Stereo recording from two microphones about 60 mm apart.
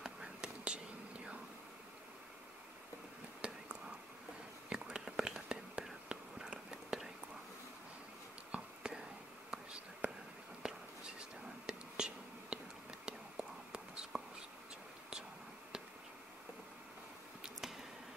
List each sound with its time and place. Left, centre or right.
0.0 s whispering: centre
3.4 s whispering: centre
8.5 s whispering: centre
10.6 s a sound: centre
11.4 s whispering: centre